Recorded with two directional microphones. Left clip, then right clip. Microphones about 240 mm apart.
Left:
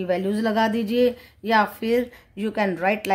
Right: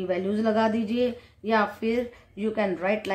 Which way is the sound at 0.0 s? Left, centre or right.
Left.